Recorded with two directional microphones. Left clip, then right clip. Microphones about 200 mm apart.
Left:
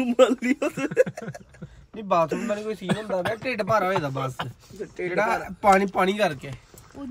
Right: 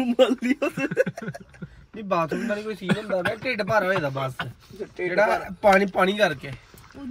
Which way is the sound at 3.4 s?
5° left (ahead or behind).